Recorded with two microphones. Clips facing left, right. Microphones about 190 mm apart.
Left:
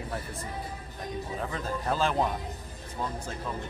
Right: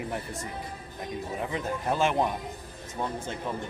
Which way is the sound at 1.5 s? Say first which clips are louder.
Right 2 dB; 20° right (ahead or behind).